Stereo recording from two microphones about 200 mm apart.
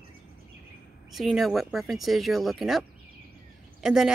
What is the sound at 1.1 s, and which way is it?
Speech, centre (ahead or behind).